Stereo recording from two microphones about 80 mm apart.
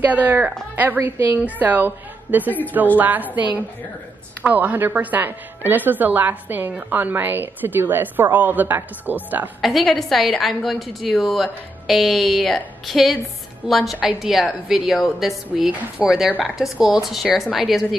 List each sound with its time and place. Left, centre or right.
0.0 s a woman's voice: right
4.4 s a woman's voice: right
9.6 s a woman's voice: centre